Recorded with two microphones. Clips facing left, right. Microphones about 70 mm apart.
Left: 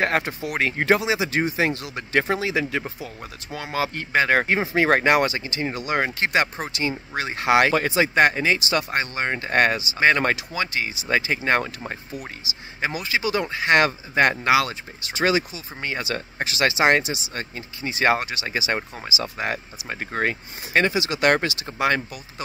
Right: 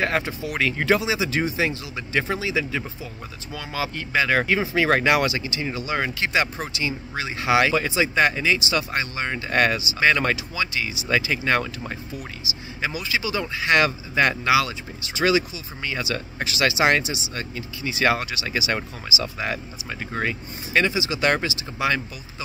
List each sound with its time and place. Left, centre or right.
0.0 s speech: left